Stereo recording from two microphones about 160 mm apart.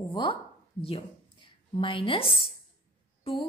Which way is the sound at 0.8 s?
35° left (ahead or behind).